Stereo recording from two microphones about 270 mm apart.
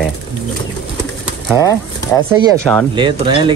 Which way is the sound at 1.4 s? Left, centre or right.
Centre.